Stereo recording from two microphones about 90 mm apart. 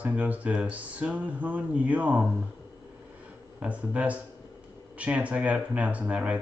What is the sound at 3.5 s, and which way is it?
Speech, 15° right (ahead or behind).